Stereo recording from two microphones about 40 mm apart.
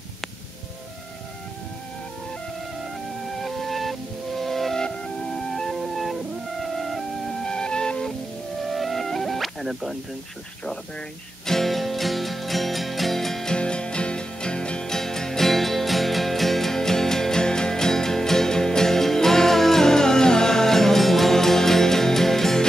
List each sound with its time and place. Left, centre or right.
2.8 s music: centre
4.7 s music: centre
5.8 s music: centre
7.4 s music: centre
8.6 s music: centre
11.4 s music: centre
13.5 s music: left